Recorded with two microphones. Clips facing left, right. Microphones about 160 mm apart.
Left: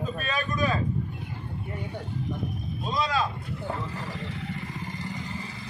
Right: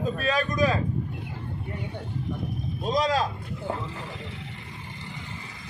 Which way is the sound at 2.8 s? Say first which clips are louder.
Right 3 dB; 40° right (ahead or behind).